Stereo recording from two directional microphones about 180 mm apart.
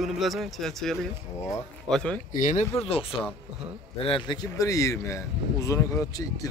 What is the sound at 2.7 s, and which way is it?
Speech, 30° left (ahead or behind).